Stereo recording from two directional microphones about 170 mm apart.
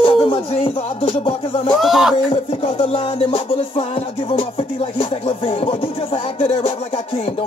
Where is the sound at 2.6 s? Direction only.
30° left (ahead or behind).